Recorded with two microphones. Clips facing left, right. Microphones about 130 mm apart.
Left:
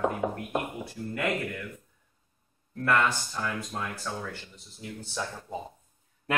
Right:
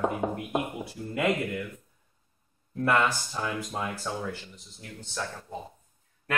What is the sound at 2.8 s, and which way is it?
Speech, 15° right (ahead or behind).